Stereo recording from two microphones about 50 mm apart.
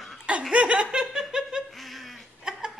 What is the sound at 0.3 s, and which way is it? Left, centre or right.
Speech, right.